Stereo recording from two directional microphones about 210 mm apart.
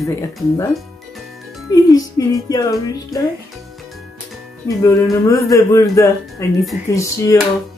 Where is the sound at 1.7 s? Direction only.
15° left (ahead or behind).